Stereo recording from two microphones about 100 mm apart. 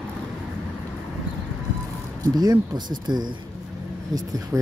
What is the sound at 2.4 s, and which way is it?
Speech, 45° right (ahead or behind).